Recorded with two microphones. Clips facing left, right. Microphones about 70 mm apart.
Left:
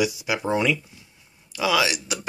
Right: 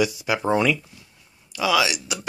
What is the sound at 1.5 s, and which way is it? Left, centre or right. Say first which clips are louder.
Speech: right 1 dB; left.